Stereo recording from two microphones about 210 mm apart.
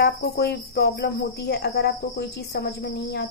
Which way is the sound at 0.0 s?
50° left (ahead or behind).